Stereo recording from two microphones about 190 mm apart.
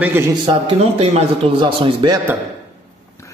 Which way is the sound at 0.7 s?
35° right (ahead or behind).